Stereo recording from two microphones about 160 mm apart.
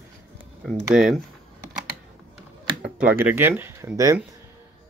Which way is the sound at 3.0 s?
10° right (ahead or behind).